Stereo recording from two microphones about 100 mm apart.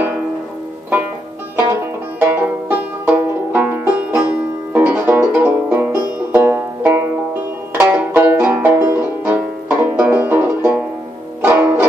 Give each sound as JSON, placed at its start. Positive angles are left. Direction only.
{"t": 2.1, "sound": "banjo", "side_deg": -15}
{"t": 11.4, "sound": "music", "side_deg": -20}